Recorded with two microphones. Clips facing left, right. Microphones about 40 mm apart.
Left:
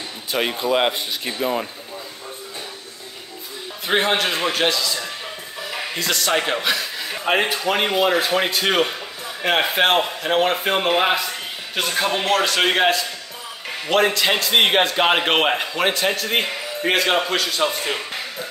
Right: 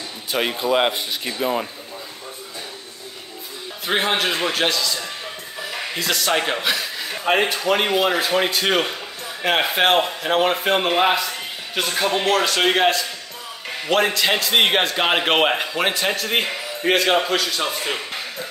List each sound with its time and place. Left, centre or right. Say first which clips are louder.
0.3 s a man's voice: even; centre
3.8 s a man's voice: left 1 dB; centre